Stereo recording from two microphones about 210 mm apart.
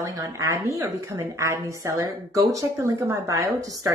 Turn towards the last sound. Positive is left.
turn(degrees=-15)  # may be behind; listen again after turning